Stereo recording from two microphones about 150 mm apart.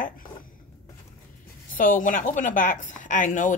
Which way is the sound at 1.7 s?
65° left (ahead or behind).